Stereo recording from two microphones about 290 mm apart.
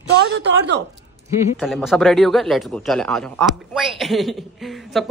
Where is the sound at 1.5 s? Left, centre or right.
Centre.